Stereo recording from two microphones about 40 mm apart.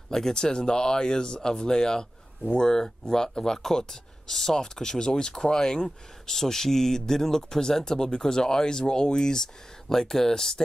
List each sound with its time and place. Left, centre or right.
0.1 s speech: centre